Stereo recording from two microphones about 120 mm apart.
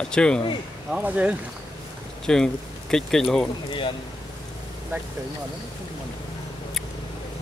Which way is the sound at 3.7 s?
40° left (ahead or behind).